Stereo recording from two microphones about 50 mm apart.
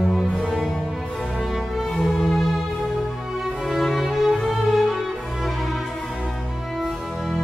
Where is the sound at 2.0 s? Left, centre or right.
Centre.